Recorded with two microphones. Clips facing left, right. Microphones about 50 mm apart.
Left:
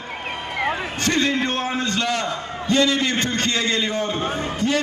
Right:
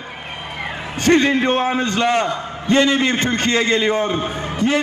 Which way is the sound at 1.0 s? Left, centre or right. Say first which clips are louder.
Right 7 dB; right.